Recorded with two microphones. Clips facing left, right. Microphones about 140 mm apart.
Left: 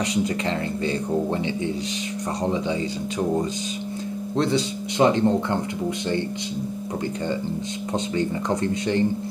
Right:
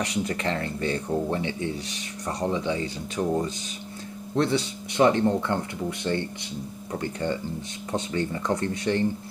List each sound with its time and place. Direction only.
0.0 s speech: 20° left (ahead or behind)
4.4 s speech: 20° left (ahead or behind)
7.9 s speech: 20° left (ahead or behind)